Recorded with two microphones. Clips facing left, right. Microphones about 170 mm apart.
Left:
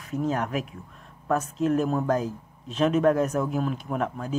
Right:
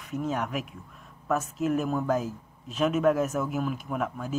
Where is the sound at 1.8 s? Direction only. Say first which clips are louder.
Left 3 dB; 30° left (ahead or behind).